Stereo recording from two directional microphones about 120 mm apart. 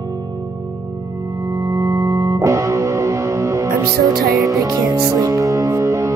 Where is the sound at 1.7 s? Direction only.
25° right (ahead or behind).